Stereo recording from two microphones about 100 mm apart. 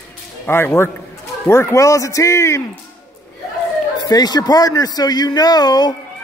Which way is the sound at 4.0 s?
45° left (ahead or behind).